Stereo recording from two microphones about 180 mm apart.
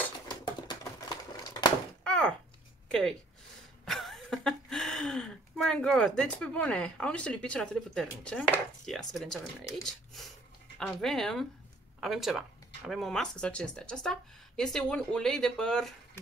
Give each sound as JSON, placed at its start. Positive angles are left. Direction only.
{"t": 0.3, "sound": "typewriter", "side_deg": 25}
{"t": 2.0, "sound": "a sound", "side_deg": 5}
{"t": 2.9, "sound": "speech", "side_deg": 5}